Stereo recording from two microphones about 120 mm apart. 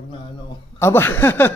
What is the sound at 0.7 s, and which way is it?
Speech, 20° left (ahead or behind).